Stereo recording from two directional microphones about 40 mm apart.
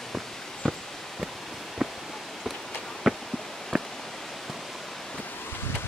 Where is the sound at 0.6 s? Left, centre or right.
Centre.